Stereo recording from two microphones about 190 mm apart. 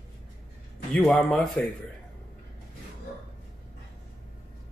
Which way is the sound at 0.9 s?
5° left (ahead or behind).